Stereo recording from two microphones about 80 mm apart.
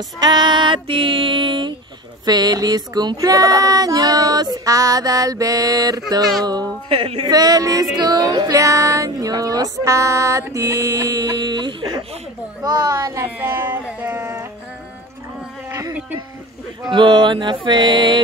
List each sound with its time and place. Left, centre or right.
0.2 s female singing: right
2.2 s child singing: right
12.6 s a child's voice: right
13.2 s speech: right
16.9 s music: right